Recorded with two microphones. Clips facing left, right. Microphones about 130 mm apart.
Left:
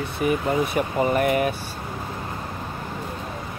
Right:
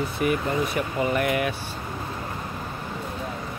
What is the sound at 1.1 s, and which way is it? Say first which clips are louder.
Speech: left 3 dB; 40° left (ahead or behind).